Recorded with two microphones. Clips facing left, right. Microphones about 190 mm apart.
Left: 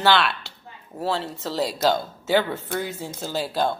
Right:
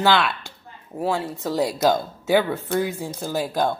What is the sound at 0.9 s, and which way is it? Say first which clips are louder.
Speech: right 2 dB; 10° right (ahead or behind).